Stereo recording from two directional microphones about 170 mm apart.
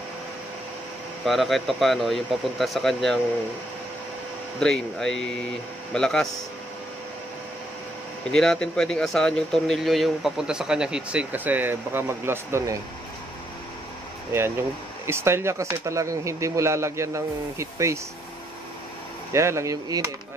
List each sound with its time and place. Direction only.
1.2 s speech: centre (ahead or behind)
4.6 s speech: 5° left (ahead or behind)
8.3 s speech: 5° left (ahead or behind); by 12.7 s 15° right (ahead or behind)
15.0 s speech: 15° right (ahead or behind)
19.3 s speech: 15° right (ahead or behind)